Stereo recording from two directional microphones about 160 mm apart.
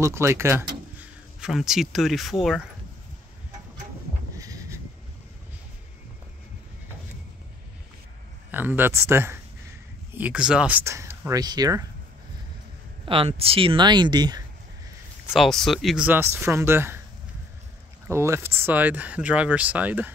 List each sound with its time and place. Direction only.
0.0 s speech: 15° right (ahead or behind)
0.9 s speech: 5° right (ahead or behind)
4.4 s a sound: 20° right (ahead or behind)
8.5 s speech: 10° right (ahead or behind)
13.0 s speech: 35° right (ahead or behind)
15.3 s speech: centre (ahead or behind); by 17.0 s 15° right (ahead or behind)
18.0 s speech: 15° right (ahead or behind)